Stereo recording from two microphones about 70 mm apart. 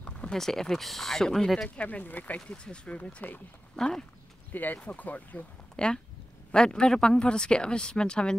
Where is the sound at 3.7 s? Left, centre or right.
Centre.